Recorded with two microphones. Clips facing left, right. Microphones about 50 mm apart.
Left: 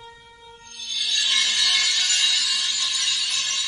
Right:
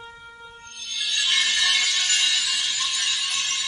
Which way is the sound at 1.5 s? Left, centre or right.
Right.